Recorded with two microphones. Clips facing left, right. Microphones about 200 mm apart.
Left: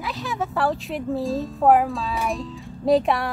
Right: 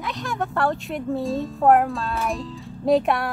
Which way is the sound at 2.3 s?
Centre (ahead or behind).